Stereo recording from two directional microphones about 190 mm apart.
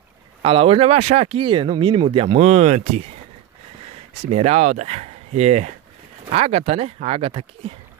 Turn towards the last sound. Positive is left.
turn(degrees=-30)  # may be behind; listen again after turning